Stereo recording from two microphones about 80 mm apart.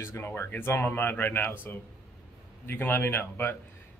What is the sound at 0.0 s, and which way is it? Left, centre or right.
A man's voice, left.